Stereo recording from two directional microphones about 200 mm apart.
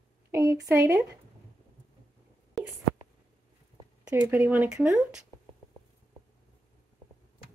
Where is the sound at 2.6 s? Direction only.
Centre (ahead or behind).